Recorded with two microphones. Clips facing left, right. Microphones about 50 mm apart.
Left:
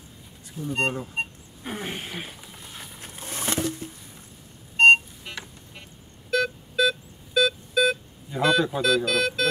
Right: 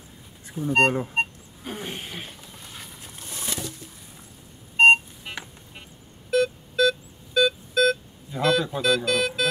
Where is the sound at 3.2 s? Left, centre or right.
Left.